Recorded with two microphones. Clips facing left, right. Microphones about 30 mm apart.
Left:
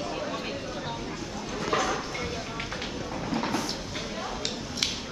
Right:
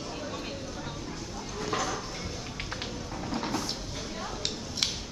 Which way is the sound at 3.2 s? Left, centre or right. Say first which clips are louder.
Left 3 dB; left.